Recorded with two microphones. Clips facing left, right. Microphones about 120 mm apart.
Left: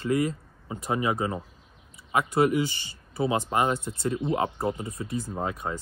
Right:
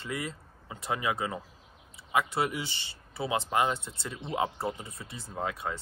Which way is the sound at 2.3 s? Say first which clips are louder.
Left 8 dB; 50° left (ahead or behind).